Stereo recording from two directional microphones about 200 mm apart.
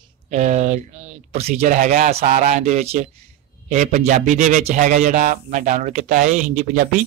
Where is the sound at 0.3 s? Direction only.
35° right (ahead or behind).